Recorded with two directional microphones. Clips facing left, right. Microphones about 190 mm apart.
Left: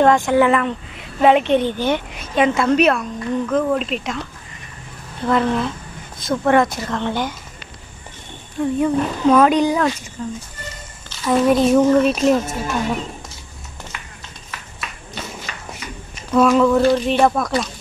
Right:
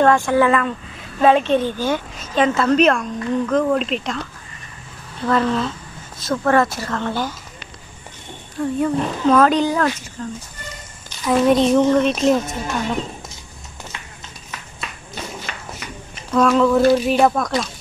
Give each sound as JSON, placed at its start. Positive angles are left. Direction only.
{"t": 0.0, "sound": "a woman's voice", "side_deg": 15}
{"t": 5.2, "sound": "a woman's voice", "side_deg": 15}
{"t": 8.7, "sound": "a woman's voice", "side_deg": 10}
{"t": 16.3, "sound": "speech", "side_deg": 5}